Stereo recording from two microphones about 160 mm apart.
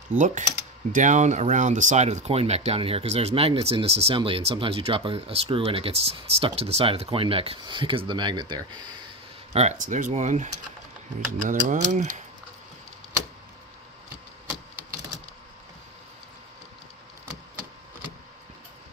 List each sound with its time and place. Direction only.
0.2 s speech: 50° right (ahead or behind); by 8.9 s 25° right (ahead or behind)
9.5 s speech: 45° right (ahead or behind)